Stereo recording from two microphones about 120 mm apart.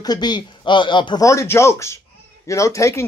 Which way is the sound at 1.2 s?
25° left (ahead or behind).